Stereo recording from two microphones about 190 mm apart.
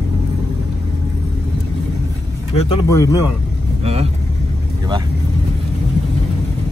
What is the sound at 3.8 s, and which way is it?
Speech, 35° right (ahead or behind).